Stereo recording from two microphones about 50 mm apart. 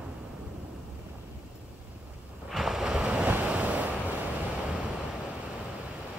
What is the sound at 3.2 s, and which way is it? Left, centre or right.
Waves, right.